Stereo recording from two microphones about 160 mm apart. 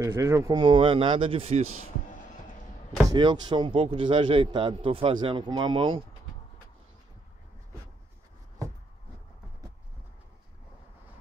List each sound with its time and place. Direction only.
0.0 s speech: 20° right (ahead or behind)
0.6 s a man's voice: 30° right (ahead or behind)
3.1 s a man's voice: 25° right (ahead or behind)